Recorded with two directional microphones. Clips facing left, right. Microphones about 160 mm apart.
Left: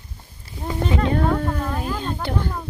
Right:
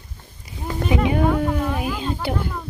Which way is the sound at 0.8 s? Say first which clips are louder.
Right 2 dB; 10° right (ahead or behind).